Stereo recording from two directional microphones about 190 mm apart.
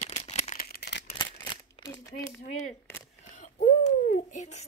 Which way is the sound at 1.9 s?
15° left (ahead or behind).